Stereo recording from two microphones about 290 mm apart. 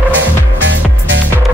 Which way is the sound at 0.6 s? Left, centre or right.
Right.